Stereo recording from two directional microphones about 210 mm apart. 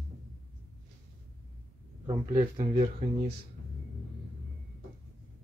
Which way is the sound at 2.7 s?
45° right (ahead or behind).